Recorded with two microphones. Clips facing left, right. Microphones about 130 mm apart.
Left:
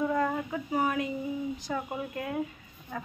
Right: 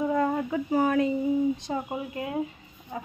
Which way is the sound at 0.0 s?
30° right (ahead or behind).